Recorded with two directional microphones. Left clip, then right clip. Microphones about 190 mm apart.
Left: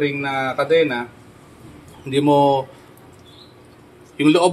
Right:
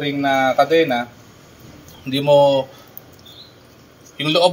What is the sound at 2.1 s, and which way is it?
Speech, 30° left (ahead or behind).